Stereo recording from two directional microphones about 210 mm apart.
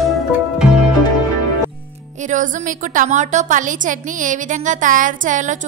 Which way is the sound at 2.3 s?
40° right (ahead or behind).